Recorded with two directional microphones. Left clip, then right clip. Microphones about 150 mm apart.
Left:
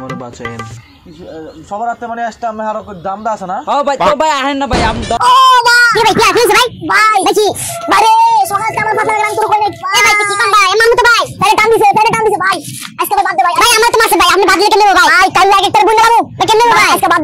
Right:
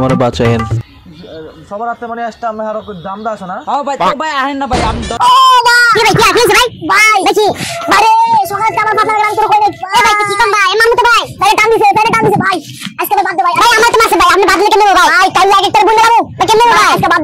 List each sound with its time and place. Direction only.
1.9 s a child's voice: 25° right (ahead or behind)
3.6 s speech: 5° right (ahead or behind)
7.2 s speech: 20° left (ahead or behind)
7.9 s a sound: 10° left (ahead or behind)
8.5 s a sound: 25° right (ahead or behind)
10.9 s a child's voice: centre (ahead or behind)
11.8 s speech: 10° right (ahead or behind)
12.4 s a child's voice: 30° right (ahead or behind)
13.7 s speech: 35° left (ahead or behind)
15.1 s speech: 20° left (ahead or behind)